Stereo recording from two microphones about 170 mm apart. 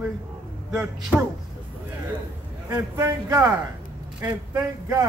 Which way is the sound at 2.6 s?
15° right (ahead or behind).